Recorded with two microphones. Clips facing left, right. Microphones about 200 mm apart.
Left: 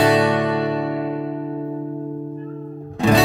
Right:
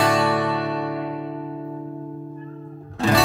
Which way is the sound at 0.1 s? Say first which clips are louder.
Left 4 dB; centre (ahead or behind).